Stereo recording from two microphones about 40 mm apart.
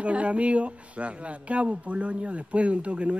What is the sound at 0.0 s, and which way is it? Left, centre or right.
Speech, right.